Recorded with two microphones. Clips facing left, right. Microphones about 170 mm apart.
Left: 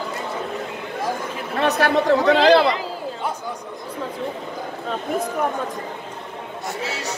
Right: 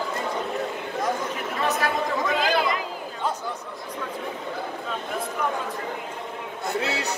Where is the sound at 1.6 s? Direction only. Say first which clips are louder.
Left 7 dB; 70° left (ahead or behind).